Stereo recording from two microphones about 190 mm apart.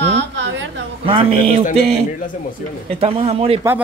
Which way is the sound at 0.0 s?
65° right (ahead or behind).